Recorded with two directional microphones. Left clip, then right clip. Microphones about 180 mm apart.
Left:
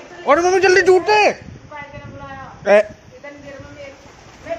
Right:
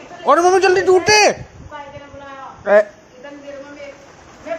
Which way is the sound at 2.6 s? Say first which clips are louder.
Even; 30° left (ahead or behind).